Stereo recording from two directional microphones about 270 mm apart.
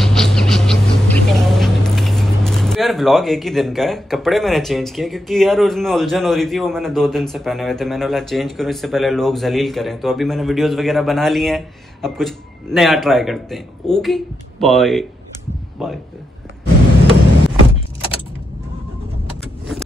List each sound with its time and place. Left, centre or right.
0.0 s a man's voice: centre